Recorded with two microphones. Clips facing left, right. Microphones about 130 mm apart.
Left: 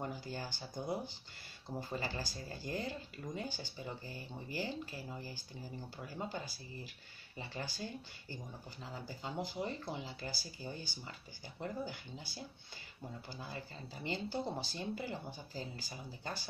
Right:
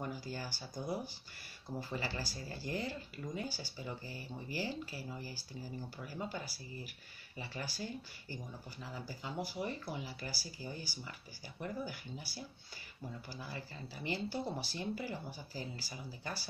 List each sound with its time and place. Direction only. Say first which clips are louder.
0.0 s speech: even; 20° left (ahead or behind)